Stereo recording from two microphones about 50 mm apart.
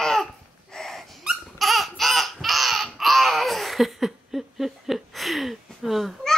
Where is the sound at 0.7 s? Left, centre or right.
Centre.